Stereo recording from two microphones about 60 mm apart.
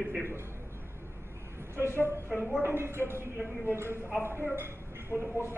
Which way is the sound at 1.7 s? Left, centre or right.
Right.